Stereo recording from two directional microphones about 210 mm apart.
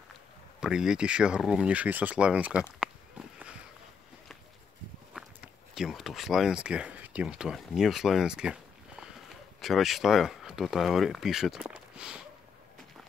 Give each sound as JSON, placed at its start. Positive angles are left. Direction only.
{"t": 0.6, "sound": "speech", "side_deg": -5}
{"t": 5.1, "sound": "speech", "side_deg": 0}